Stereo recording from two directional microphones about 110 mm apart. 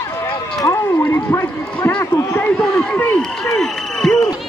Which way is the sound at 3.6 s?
5° left (ahead or behind).